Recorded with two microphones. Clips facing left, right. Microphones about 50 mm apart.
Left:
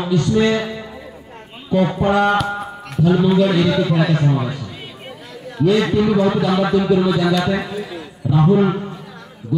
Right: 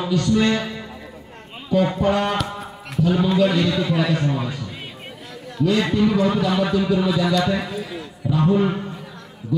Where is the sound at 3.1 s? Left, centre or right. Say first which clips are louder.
Left 3 dB; centre.